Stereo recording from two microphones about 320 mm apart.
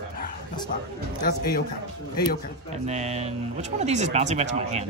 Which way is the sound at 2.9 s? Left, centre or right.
Centre.